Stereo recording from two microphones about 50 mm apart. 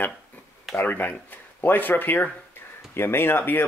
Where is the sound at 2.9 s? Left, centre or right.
Left.